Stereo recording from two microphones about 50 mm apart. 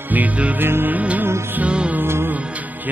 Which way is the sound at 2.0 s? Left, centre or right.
Right.